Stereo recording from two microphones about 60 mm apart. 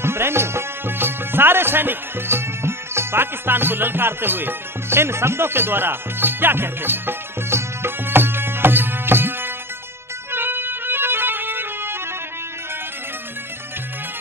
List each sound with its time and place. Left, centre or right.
0.0 s music: right